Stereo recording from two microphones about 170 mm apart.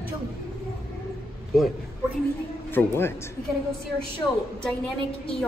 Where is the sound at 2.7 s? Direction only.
15° left (ahead or behind).